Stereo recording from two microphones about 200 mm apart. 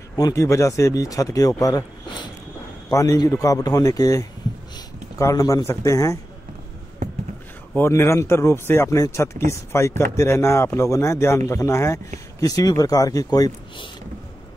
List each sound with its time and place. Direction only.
0.1 s speech: 15° left (ahead or behind)
7.7 s speech: 15° left (ahead or behind)